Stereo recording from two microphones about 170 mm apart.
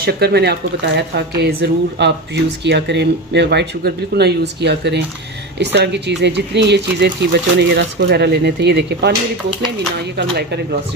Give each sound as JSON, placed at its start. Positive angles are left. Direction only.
{"t": 0.0, "sound": "speech", "side_deg": -70}